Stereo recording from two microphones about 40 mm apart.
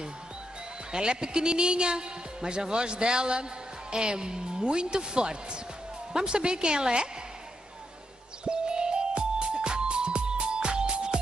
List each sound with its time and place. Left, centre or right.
0.9 s a woman's voice: centre
8.5 s music: right